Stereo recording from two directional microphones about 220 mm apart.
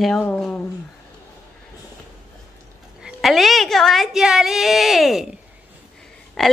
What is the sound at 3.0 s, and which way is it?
Speech, centre (ahead or behind).